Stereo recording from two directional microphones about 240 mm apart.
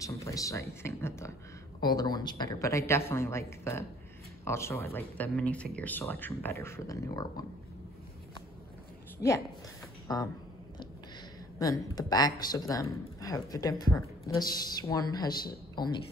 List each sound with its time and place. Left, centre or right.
0.0 s speech: centre
10.1 s speech: centre
11.5 s speech: centre